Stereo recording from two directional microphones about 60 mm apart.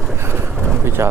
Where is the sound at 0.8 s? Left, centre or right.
Right.